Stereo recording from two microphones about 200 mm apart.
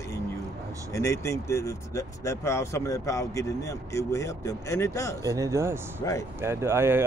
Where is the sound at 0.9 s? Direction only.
15° left (ahead or behind).